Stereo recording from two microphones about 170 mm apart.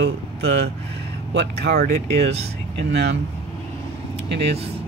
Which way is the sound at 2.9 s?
75° right (ahead or behind).